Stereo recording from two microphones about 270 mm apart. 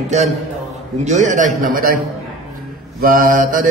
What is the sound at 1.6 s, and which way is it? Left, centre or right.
Mantra, right.